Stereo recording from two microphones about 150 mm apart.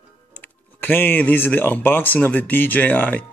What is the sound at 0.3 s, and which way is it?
Speech, 10° left (ahead or behind).